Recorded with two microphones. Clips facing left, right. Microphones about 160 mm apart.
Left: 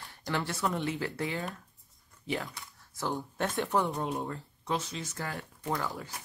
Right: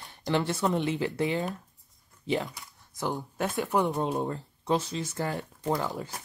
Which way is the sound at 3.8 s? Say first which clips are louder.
Right 5 dB; 25° right (ahead or behind).